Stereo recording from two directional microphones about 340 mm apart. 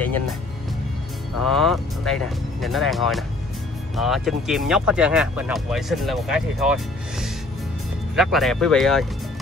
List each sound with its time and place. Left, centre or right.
1.4 s speech: centre